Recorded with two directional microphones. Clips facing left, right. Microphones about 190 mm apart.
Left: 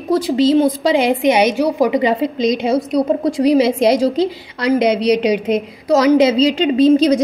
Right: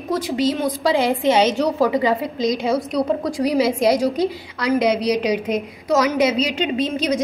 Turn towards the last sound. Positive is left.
turn(degrees=35)  # may be behind; listen again after turning